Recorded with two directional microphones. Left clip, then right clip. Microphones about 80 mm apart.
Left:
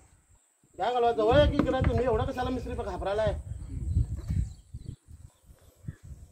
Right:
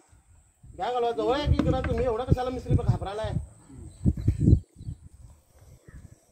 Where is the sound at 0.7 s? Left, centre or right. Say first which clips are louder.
Left 1 dB; centre.